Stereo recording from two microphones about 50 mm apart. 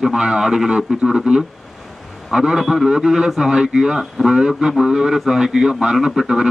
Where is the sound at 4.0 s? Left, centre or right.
Centre.